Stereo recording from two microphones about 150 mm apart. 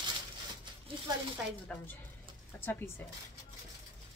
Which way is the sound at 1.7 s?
10° left (ahead or behind).